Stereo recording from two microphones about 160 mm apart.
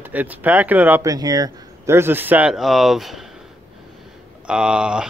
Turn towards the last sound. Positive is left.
turn(degrees=-5)  # may be behind; listen again after turning